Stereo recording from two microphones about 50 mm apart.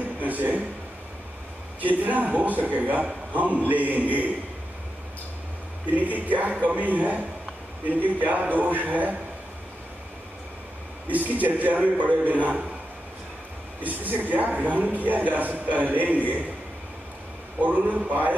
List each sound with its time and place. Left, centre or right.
0.2 s a sound: right
1.8 s a man's voice: right
5.9 s a man's voice: right
11.1 s a man's voice: right
13.7 s a man's voice: right
17.6 s a man's voice: right